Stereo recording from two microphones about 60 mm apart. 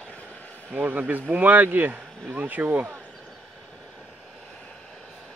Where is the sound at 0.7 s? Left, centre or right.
Right.